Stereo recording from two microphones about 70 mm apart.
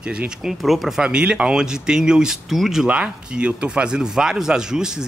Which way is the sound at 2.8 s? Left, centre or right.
Centre.